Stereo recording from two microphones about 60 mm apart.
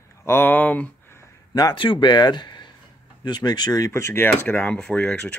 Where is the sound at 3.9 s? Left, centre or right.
Left.